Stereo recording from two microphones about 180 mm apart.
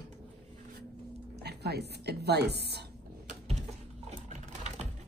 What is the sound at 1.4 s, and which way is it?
A woman's voice, 65° right (ahead or behind).